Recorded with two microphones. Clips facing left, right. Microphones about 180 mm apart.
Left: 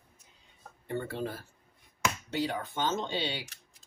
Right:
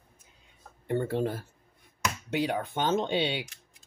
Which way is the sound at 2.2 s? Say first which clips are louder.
Right 3 dB; 60° right (ahead or behind).